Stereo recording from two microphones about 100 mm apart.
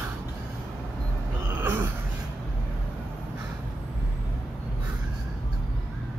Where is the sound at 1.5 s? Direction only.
20° right (ahead or behind).